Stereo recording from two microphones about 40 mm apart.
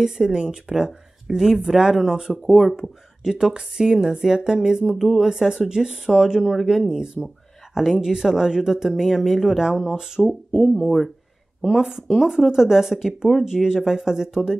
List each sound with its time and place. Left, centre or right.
0.0 s speech: centre
2.3 s speech: centre
2.7 s speech: centre
6.4 s speech: centre
6.8 s speech: centre